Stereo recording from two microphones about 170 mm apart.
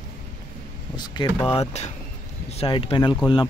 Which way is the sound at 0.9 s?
25° left (ahead or behind).